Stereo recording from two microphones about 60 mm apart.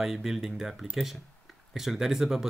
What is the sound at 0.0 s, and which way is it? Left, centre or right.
Speech, centre.